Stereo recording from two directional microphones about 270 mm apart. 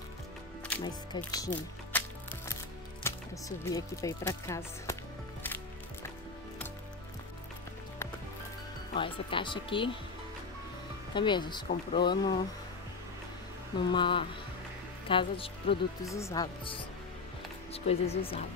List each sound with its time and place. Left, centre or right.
0.8 s speech: centre
8.9 s speech: centre
11.1 s speech: centre
13.7 s speech: centre